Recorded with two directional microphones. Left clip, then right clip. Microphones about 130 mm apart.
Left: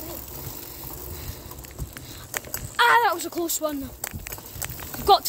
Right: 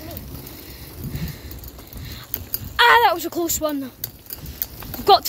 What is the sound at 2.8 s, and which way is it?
Speech, 45° right (ahead or behind).